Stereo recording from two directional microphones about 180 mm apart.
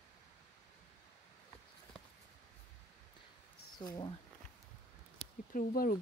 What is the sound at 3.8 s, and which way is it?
Speech, 25° left (ahead or behind).